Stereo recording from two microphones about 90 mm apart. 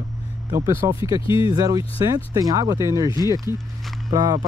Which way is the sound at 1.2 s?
70° left (ahead or behind).